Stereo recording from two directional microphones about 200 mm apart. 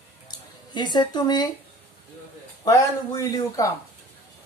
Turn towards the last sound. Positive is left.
turn(degrees=15)  # may be behind; listen again after turning